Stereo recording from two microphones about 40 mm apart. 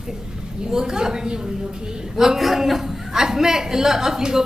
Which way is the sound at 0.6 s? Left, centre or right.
Centre.